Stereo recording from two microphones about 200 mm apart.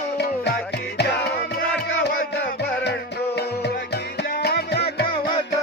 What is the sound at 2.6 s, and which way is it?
Music, 55° left (ahead or behind).